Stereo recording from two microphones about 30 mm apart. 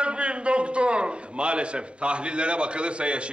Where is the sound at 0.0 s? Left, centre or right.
Right.